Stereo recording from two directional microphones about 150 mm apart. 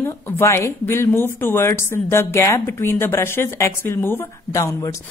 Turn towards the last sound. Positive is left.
turn(degrees=20)  # may be behind; listen again after turning